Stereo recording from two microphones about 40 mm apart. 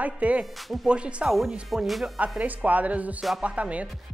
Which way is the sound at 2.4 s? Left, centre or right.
Right.